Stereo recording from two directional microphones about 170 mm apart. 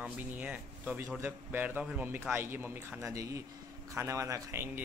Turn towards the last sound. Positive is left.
turn(degrees=-15)  # may be behind; listen again after turning